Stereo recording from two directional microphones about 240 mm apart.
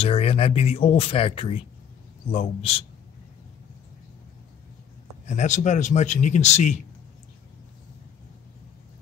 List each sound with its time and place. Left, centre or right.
0.0 s speech: left
5.2 s speech: left